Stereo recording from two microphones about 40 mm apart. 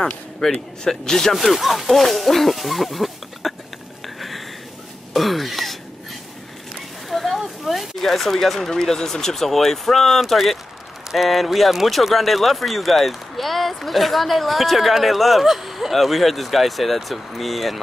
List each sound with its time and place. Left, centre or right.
0.4 s speech: centre
1.3 s speech: centre
5.1 s speech: centre
7.1 s a sound: centre
8.0 s speech: centre